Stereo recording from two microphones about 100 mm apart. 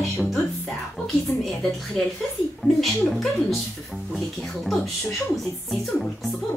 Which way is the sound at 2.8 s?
Centre (ahead or behind).